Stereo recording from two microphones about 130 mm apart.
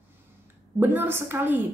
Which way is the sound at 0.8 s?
15° right (ahead or behind).